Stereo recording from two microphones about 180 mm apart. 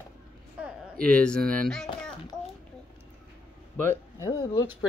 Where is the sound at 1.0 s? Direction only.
5° left (ahead or behind).